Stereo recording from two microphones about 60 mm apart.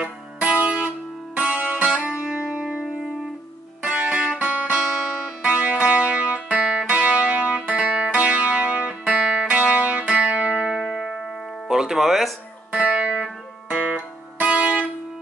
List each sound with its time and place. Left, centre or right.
0.4 s music: right
3.8 s music: centre
10.8 s music: centre
12.7 s music: centre